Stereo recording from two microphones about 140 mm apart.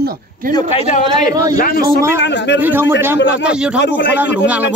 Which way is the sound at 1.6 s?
90° left.